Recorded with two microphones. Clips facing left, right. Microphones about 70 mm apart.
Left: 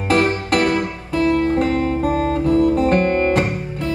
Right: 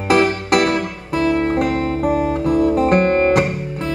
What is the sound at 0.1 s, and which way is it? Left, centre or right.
Music, centre.